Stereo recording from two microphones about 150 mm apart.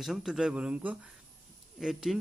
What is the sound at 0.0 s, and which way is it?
Speech, centre (ahead or behind).